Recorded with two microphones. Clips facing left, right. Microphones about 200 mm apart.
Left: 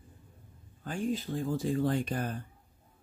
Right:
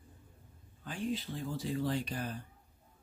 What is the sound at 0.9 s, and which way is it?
Speech, 45° left (ahead or behind).